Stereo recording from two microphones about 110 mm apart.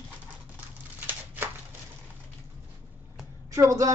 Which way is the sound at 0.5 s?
20° right (ahead or behind).